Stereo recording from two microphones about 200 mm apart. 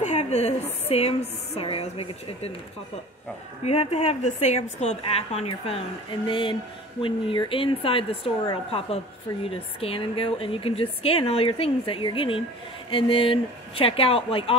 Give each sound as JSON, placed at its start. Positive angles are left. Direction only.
{"t": 0.0, "sound": "a woman's voice", "side_deg": 35}
{"t": 3.6, "sound": "a woman's voice", "side_deg": 30}